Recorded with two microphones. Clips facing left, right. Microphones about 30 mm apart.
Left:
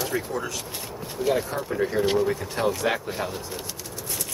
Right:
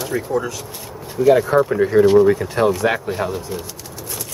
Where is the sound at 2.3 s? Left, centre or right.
Centre.